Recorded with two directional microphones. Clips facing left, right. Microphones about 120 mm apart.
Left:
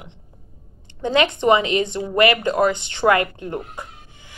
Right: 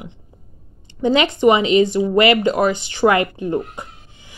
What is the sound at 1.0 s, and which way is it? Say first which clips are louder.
Speech: right 3 dB; 15° right (ahead or behind).